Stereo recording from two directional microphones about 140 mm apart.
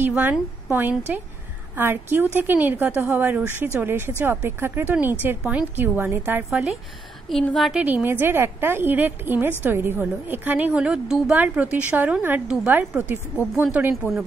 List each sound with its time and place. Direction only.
0.0 s a woman's voice: 15° right (ahead or behind)
7.2 s a woman's voice: centre (ahead or behind)
7.8 s a woman's voice: 15° right (ahead or behind)